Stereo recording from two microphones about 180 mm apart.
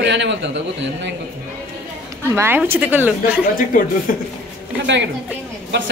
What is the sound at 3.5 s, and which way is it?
Speech, 50° left (ahead or behind).